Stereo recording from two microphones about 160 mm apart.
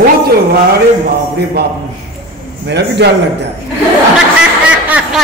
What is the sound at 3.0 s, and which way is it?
Speech, 90° right.